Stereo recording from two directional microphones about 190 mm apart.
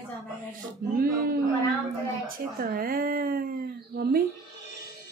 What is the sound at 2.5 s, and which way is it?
Speech, 50° right (ahead or behind).